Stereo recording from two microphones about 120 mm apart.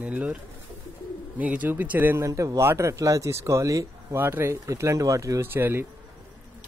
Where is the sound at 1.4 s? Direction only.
15° right (ahead or behind).